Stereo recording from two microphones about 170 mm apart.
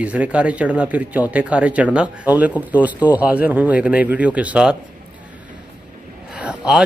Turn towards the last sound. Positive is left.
turn(degrees=-5)  # may be behind; listen again after turning